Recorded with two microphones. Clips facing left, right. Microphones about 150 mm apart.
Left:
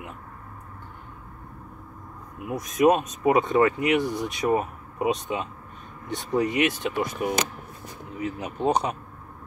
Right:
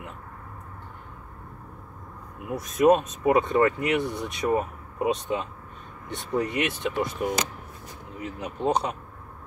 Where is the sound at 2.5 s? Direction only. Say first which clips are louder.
Even; 15° left (ahead or behind).